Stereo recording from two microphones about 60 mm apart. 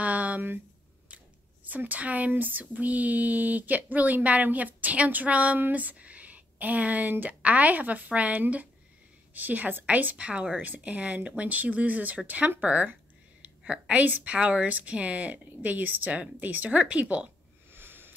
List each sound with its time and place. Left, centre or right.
0.0 s a sound: right
1.1 s speech: right
17.7 s sniff: right